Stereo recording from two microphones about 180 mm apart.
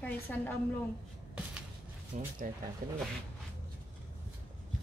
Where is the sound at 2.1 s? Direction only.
40° right (ahead or behind).